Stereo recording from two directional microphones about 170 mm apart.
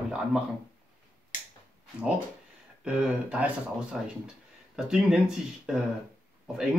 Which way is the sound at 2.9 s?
5° right (ahead or behind).